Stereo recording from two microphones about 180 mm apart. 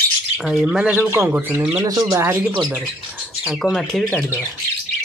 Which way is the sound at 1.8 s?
20° right (ahead or behind).